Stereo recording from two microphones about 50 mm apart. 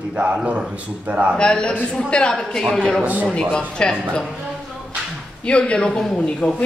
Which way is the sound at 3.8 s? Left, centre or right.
Centre.